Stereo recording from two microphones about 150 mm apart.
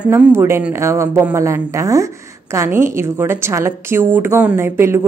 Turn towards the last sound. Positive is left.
turn(degrees=-15)  # may be behind; listen again after turning